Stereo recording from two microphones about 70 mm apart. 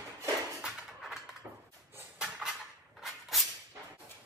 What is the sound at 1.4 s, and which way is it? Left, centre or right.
Dishes, centre.